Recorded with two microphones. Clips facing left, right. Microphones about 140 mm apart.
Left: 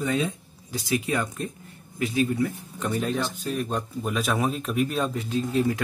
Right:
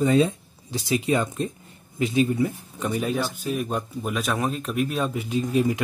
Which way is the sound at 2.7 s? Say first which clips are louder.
Right 1 dB; 10° right (ahead or behind).